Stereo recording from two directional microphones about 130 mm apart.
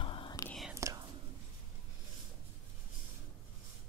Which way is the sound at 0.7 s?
25° right (ahead or behind).